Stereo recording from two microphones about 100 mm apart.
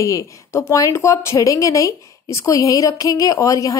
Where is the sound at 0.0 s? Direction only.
30° left (ahead or behind).